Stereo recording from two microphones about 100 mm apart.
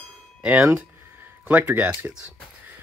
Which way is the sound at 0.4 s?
15° right (ahead or behind).